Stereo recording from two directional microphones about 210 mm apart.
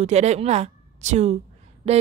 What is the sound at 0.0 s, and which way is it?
A woman's voice, 30° right (ahead or behind).